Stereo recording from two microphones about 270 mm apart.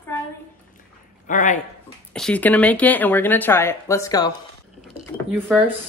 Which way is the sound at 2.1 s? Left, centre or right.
Centre.